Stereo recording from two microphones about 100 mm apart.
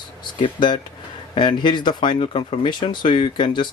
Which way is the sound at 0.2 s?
50° left (ahead or behind).